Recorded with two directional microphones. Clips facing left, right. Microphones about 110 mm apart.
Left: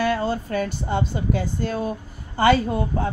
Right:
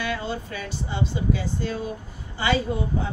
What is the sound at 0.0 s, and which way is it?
Speech, 40° left (ahead or behind).